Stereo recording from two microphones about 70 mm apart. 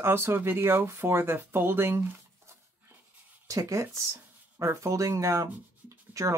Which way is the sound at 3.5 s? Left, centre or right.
Right.